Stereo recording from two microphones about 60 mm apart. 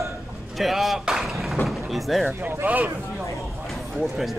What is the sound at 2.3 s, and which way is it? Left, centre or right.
Speech, right.